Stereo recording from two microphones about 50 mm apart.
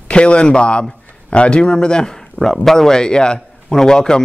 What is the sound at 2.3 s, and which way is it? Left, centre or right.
A man's voice, centre.